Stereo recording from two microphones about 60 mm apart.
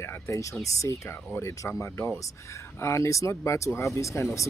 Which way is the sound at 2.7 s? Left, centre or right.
Left.